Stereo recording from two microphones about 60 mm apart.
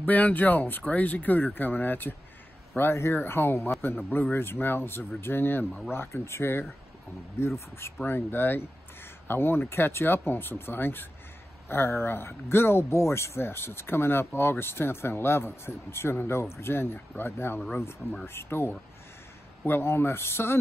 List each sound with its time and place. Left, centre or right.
0.0 s speech: left
2.8 s speech: left
8.0 s speech: left